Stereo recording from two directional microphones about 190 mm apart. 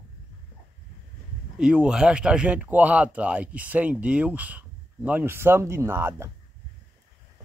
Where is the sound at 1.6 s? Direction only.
5° right (ahead or behind).